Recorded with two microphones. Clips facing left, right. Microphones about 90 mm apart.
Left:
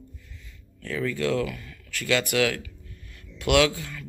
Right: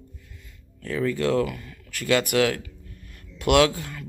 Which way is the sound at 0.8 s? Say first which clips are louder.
Right 3 dB; 20° right (ahead or behind).